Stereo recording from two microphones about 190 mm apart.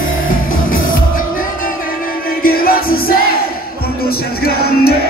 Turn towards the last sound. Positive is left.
turn(degrees=55)  # may be behind; listen again after turning